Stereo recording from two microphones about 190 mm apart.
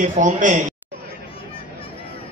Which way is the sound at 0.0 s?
40° right (ahead or behind).